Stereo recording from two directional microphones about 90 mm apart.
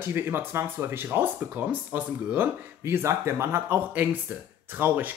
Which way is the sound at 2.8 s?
30° right (ahead or behind).